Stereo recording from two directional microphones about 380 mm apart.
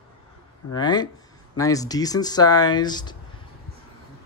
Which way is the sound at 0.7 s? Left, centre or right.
Centre.